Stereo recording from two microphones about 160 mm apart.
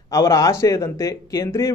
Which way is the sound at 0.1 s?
20° left (ahead or behind).